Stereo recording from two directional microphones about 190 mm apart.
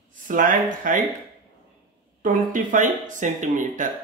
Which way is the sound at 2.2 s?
45° right (ahead or behind).